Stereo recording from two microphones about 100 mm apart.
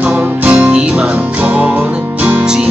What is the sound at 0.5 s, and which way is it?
Music, 15° right (ahead or behind).